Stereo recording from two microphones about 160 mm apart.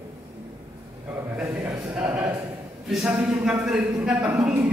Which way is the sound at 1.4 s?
15° right (ahead or behind).